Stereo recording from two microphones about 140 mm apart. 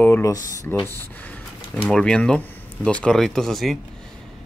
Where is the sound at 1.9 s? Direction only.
5° left (ahead or behind).